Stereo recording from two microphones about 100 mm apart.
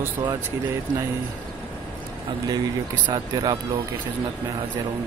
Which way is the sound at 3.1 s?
40° right (ahead or behind).